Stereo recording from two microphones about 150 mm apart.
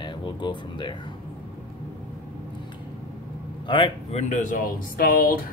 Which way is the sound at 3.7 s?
40° left (ahead or behind).